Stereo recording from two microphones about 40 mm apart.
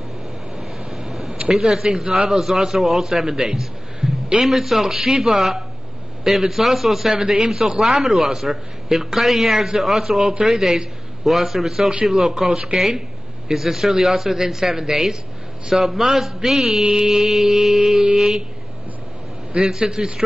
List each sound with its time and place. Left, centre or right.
0.9 s a sound: centre
1.5 s a man's voice: centre
12.4 s speech: right
12.7 s a man's voice: centre
19.7 s a man's voice: centre